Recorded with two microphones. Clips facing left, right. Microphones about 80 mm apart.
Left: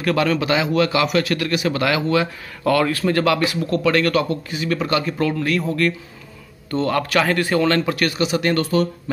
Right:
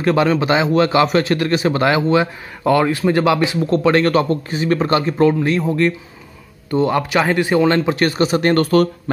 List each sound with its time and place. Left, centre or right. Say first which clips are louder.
0.0 s speech: right 4 dB; right